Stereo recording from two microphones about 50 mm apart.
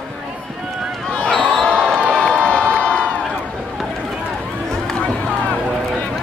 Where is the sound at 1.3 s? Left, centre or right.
Centre.